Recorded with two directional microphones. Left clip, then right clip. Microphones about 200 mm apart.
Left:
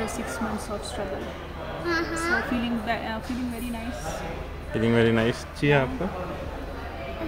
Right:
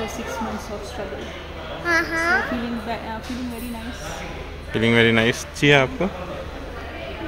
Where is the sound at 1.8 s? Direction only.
40° right (ahead or behind).